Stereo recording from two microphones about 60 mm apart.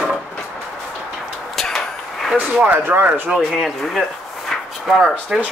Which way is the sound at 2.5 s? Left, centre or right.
Centre.